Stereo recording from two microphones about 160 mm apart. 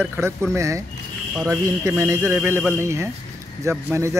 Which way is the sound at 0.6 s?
20° right (ahead or behind).